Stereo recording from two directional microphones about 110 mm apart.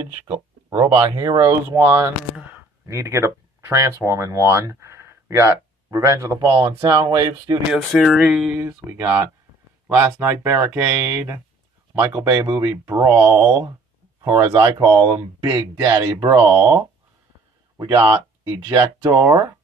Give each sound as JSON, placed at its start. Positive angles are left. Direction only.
{"t": 0.3, "sound": "speech", "side_deg": -30}
{"t": 7.7, "sound": "speech", "side_deg": 5}
{"t": 8.5, "sound": "speech", "side_deg": -20}
{"t": 17.7, "sound": "speech", "side_deg": -40}
{"t": 18.7, "sound": "speech", "side_deg": -30}